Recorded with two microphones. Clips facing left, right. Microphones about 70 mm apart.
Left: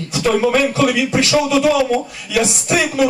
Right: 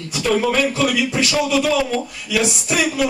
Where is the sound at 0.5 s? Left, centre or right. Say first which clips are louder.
Left 3 dB; left.